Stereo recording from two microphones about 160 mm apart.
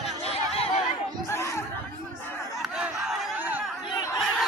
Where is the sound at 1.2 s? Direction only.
15° left (ahead or behind).